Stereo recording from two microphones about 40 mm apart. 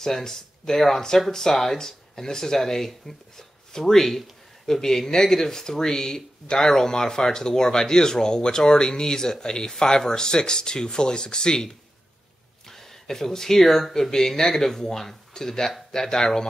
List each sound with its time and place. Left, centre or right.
0.0 s speech: centre